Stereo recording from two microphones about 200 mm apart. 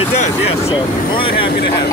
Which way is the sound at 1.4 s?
55° left (ahead or behind).